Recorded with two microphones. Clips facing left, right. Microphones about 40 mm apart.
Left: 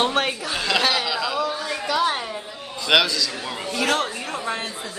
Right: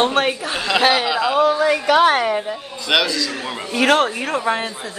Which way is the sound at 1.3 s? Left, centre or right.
Right.